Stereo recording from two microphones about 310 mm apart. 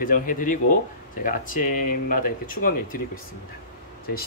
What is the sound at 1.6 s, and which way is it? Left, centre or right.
Speech, left.